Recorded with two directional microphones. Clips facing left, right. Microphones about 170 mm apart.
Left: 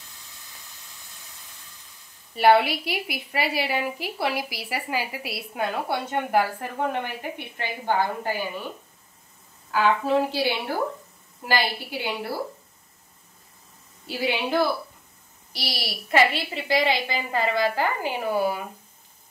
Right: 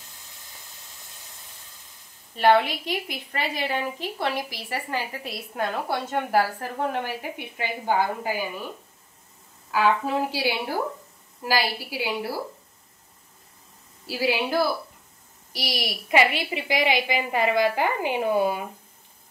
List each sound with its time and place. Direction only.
2.3 s a woman's voice: 10° left (ahead or behind); by 8.5 s 10° right (ahead or behind)
9.7 s a woman's voice: 5° right (ahead or behind)
14.0 s a woman's voice: 5° right (ahead or behind); by 18.6 s 20° right (ahead or behind)